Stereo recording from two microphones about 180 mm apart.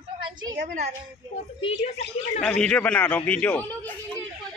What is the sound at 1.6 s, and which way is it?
Speech, 40° left (ahead or behind).